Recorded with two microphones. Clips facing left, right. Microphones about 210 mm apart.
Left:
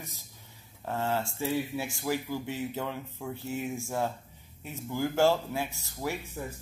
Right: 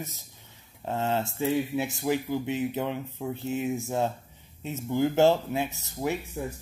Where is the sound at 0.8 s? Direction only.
20° right (ahead or behind).